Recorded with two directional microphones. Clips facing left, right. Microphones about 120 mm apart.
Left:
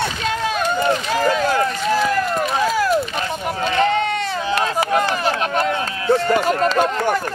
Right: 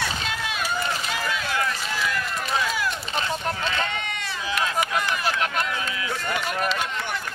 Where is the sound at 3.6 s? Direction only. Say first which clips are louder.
Left 10 dB; 40° left (ahead or behind).